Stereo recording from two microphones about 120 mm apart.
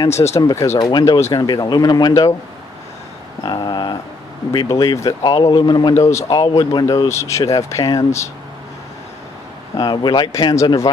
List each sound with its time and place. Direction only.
0.1 s speech: 65° left (ahead or behind)
0.4 s speech: 35° left (ahead or behind)
3.4 s speech: 35° left (ahead or behind)
5.9 s speech: 25° left (ahead or behind)
7.1 s speech: 25° left (ahead or behind)
9.8 s speech: 40° left (ahead or behind)